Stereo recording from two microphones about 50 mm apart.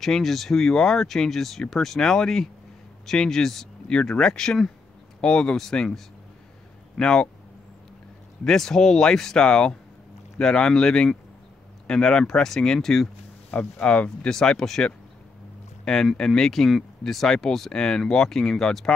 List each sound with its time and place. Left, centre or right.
0.0 s speech: centre
7.0 s speech: centre
8.5 s speech: centre
13.5 s speech: centre